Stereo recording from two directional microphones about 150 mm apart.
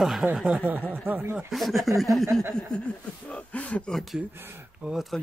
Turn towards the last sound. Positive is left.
turn(degrees=0)  # may be behind; listen again after turning